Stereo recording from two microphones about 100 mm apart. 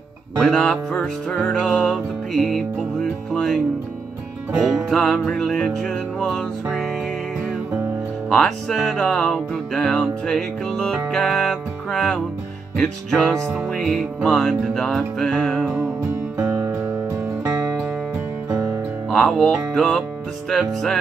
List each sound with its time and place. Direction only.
0.4 s music: 5° left (ahead or behind)
4.8 s music: 5° left (ahead or behind)
8.3 s music: 5° left (ahead or behind)
16.3 s music: 25° right (ahead or behind)
19.0 s music: 10° left (ahead or behind)